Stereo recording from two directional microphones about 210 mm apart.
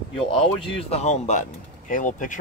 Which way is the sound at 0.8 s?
30° left (ahead or behind).